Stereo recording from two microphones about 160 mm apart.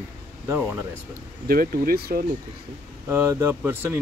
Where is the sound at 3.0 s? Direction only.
15° right (ahead or behind).